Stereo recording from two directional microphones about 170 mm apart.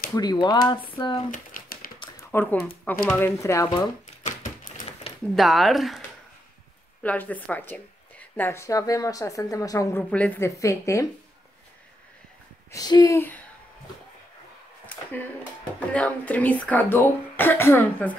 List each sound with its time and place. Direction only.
0.1 s speech: 25° left (ahead or behind)
1.3 s typewriter: 55° left (ahead or behind)
2.1 s a woman's voice: 10° left (ahead or behind)
4.2 s typewriter: 50° left (ahead or behind)
5.3 s speech: centre (ahead or behind)
7.0 s a woman's voice: 10° left (ahead or behind)
12.7 s speech: 20° left (ahead or behind)
15.9 s a woman's voice: 10° left (ahead or behind)